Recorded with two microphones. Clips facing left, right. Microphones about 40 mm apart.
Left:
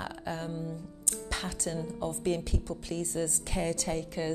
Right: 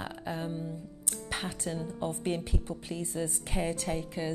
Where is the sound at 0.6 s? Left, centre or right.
Right.